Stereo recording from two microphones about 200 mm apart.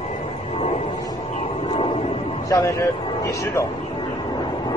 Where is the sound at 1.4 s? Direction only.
30° left (ahead or behind).